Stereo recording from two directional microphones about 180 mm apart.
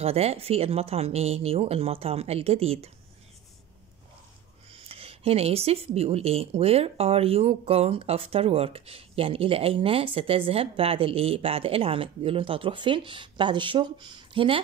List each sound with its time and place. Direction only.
0.0 s speech: 35° right (ahead or behind)
4.7 s speech: 30° right (ahead or behind)